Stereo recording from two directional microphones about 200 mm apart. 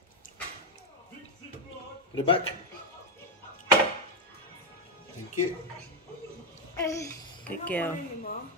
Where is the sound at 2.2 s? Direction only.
25° left (ahead or behind).